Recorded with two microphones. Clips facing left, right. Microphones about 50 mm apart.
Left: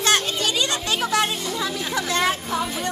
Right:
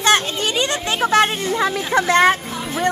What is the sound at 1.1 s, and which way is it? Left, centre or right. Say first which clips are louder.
Speech: right 6 dB; right.